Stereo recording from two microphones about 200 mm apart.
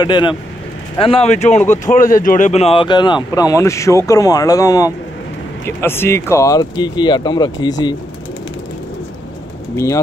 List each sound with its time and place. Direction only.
0.0 s speech: 25° left (ahead or behind)